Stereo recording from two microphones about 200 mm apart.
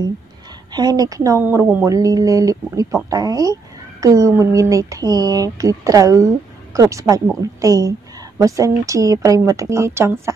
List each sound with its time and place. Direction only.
0.7 s speech: 20° right (ahead or behind)